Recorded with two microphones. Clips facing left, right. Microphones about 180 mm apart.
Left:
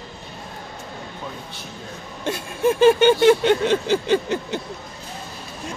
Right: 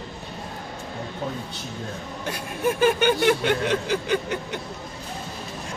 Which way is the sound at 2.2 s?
25° left (ahead or behind).